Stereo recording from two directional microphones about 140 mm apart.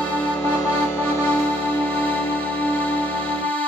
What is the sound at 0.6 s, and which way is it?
Music, 15° left (ahead or behind).